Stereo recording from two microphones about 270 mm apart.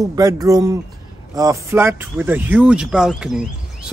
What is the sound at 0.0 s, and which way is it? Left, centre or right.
Speech, centre.